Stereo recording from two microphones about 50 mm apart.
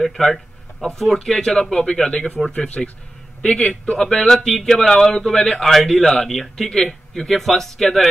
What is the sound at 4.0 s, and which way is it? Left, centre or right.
A man's voice, centre.